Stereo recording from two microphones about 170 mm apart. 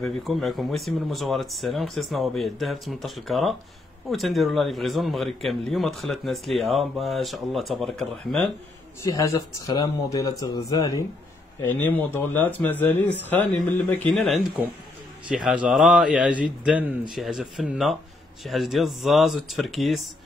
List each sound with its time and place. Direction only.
0.0 s speech: centre (ahead or behind)
9.0 s speech: 20° left (ahead or behind); by 20.1 s centre (ahead or behind)